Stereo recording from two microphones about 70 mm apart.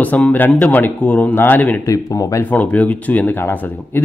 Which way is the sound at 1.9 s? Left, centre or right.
Left.